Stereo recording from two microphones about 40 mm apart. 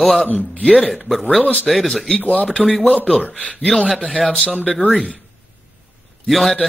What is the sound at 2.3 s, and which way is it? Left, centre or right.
Speech, left.